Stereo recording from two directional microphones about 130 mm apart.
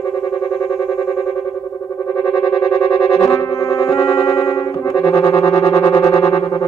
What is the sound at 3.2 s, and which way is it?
Music, 25° left (ahead or behind).